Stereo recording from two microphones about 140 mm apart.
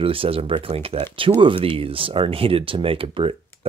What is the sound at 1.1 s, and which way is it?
Speech, 35° right (ahead or behind).